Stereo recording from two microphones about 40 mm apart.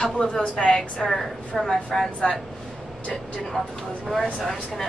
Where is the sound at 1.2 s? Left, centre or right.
Centre.